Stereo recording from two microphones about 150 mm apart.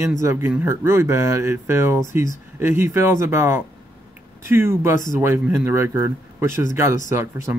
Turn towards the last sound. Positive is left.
turn(degrees=-15)  # may be behind; listen again after turning